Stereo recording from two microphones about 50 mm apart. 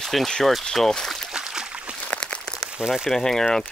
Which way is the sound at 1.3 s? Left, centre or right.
Centre.